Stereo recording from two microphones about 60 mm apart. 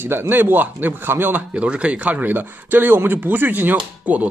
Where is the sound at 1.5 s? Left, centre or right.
Right.